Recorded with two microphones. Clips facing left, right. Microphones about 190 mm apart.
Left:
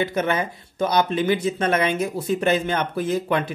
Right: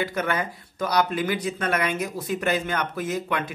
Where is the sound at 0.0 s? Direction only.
25° left (ahead or behind).